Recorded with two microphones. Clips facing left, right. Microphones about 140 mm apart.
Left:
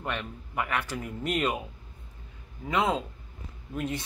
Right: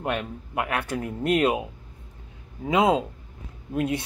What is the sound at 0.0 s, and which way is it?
Speech, 55° right (ahead or behind).